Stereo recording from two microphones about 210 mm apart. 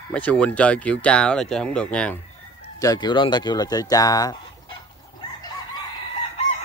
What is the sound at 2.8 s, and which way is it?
Speech, 20° left (ahead or behind).